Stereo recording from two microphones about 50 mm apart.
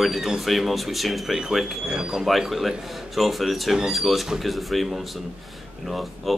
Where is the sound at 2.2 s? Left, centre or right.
Centre.